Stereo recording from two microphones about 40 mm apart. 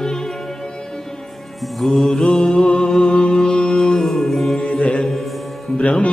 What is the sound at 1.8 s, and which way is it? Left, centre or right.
Mantra, centre.